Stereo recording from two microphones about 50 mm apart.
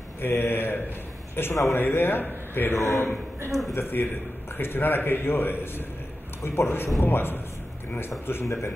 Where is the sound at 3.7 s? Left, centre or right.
Left.